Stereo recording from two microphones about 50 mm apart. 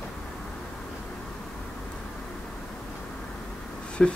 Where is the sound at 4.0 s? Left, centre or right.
Centre.